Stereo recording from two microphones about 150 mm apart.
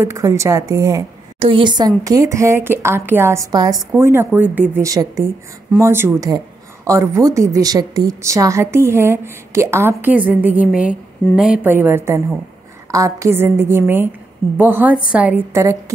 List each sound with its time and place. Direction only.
0.0 s speech: 20° right (ahead or behind)
1.4 s a woman's voice: 35° right (ahead or behind); by 15.4 s 10° right (ahead or behind)
15.5 s speech: 20° right (ahead or behind)